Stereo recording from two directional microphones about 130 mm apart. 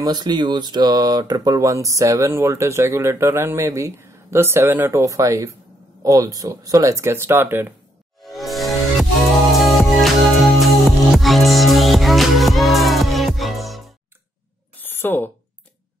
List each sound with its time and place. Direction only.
0.0 s speech: 35° right (ahead or behind); by 7.7 s 15° right (ahead or behind)
8.2 s music: centre (ahead or behind)
14.8 s a sound: 15° left (ahead or behind)